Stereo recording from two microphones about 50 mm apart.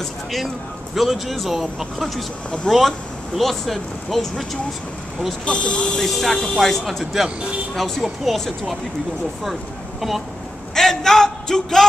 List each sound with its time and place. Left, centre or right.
0.0 s speech: centre
2.7 s speech: centre
3.3 s speech: centre
5.4 s speech: left
5.9 s speech: centre
10.7 s a sound: centre